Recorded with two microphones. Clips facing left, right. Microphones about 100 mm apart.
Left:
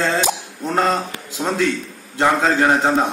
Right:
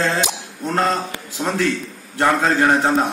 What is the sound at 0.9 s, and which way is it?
Speech, 15° left (ahead or behind).